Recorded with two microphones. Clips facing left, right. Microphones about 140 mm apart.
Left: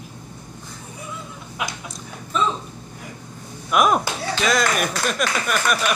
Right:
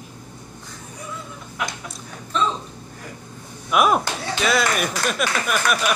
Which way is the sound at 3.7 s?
5° right (ahead or behind).